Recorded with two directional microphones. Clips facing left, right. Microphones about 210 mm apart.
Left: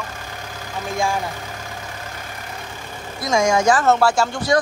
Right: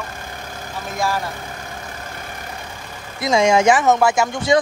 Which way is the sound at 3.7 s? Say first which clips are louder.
Right 1 dB; 15° right (ahead or behind).